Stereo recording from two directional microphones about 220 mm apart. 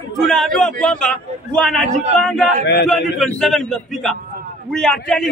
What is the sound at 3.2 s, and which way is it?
A man's voice, centre (ahead or behind).